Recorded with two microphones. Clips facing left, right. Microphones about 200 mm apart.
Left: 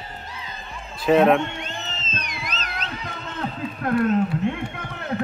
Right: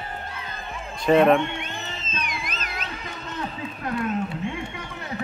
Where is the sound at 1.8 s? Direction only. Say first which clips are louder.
Right 1 dB; 50° right (ahead or behind).